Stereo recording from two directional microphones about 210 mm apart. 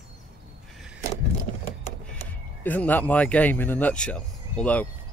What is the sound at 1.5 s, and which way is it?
Vehicle, 30° right (ahead or behind).